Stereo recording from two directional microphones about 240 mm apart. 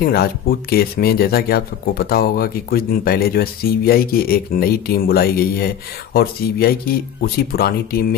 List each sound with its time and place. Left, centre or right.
0.0 s speech: left